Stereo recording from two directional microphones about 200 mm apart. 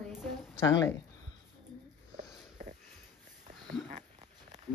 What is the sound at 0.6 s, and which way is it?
Speech, 15° left (ahead or behind).